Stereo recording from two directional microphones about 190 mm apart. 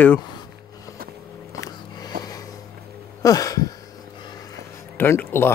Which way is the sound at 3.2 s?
20° left (ahead or behind).